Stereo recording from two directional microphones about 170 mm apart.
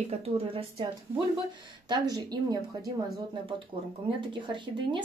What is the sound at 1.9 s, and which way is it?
Speech, 25° right (ahead or behind).